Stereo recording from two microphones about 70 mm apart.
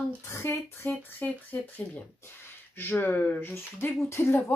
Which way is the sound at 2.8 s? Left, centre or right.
Left.